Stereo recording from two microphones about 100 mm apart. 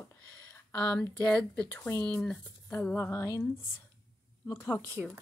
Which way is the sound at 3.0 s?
30° left (ahead or behind).